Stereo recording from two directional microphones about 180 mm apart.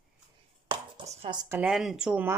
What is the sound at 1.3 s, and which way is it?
Speech, 20° right (ahead or behind).